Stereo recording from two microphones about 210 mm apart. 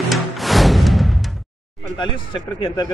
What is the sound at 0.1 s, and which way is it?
Music, centre (ahead or behind).